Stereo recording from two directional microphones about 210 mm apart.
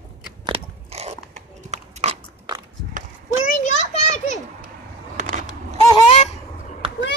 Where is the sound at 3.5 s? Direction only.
35° left (ahead or behind).